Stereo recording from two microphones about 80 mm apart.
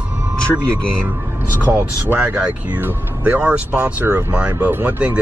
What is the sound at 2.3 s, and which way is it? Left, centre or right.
Speech, right.